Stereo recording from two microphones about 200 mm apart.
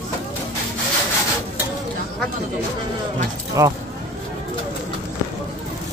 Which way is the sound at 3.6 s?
15° right (ahead or behind).